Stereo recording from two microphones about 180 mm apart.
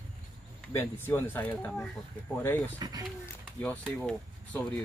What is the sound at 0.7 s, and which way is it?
Speech, 10° left (ahead or behind).